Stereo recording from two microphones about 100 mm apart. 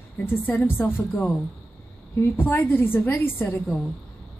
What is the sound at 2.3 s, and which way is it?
A woman's voice, 20° left (ahead or behind).